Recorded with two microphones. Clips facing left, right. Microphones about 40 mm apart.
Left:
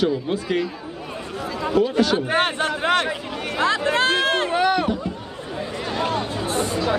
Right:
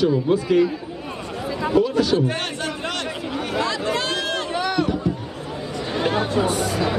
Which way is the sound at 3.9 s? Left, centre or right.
Left.